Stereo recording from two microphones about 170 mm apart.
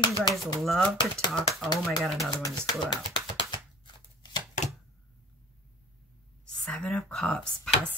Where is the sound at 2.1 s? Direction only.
20° left (ahead or behind).